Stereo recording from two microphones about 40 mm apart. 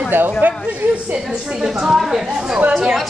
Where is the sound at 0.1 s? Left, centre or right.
Right.